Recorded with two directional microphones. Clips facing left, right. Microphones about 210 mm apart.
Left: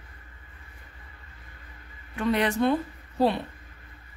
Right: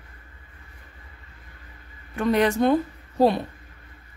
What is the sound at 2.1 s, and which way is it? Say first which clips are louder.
A woman's voice: right 4 dB; 45° right (ahead or behind).